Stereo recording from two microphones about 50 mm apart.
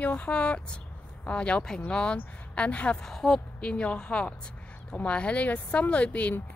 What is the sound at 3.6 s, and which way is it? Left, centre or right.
Speech, left.